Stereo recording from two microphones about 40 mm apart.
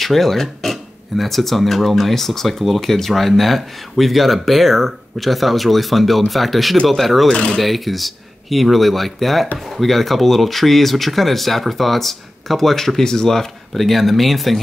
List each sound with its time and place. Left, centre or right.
0.0 s speech: centre
7.2 s speech: left
7.5 s speech: centre